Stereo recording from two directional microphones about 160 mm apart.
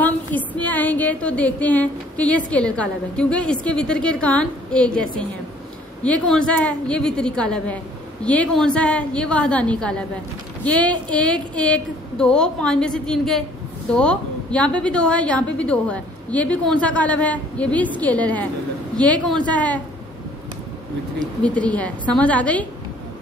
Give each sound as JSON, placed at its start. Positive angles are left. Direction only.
{"t": 0.6, "sound": "a woman's voice", "side_deg": 10}
{"t": 21.4, "sound": "a woman's voice", "side_deg": 10}